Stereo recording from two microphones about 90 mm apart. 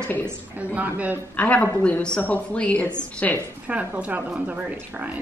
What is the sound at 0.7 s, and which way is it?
Speech, 20° right (ahead or behind).